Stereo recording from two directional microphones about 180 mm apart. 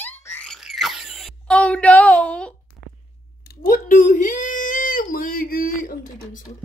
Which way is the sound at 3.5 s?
50° left (ahead or behind).